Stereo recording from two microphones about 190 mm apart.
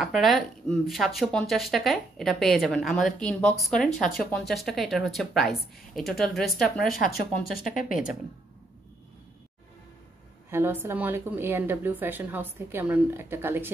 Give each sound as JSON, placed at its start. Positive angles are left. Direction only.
{"t": 0.0, "sound": "speech", "side_deg": 0}
{"t": 7.5, "sound": "speech", "side_deg": 45}
{"t": 10.5, "sound": "a woman's voice", "side_deg": -10}